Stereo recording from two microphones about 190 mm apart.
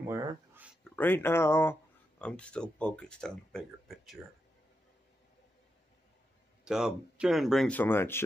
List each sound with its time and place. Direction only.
0.0 s a sound: 15° right (ahead or behind)
0.8 s speech: 10° left (ahead or behind)
6.6 s speech: 5° right (ahead or behind); by 8.2 s 10° left (ahead or behind)